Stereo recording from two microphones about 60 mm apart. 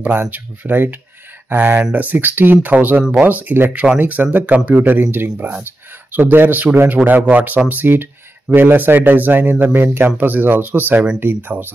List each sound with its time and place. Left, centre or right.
0.0 s speech: right